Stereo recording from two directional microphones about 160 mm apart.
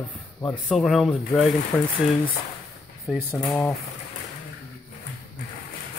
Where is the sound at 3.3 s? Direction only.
5° left (ahead or behind).